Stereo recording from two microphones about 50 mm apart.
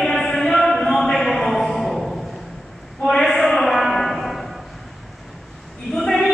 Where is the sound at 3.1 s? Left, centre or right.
Centre.